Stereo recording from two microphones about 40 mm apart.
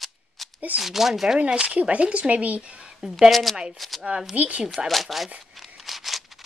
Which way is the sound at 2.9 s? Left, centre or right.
Centre.